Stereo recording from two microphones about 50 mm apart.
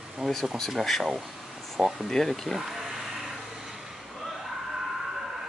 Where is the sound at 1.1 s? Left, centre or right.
Centre.